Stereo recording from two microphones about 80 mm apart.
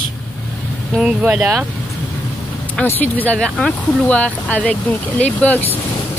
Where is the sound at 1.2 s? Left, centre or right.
Right.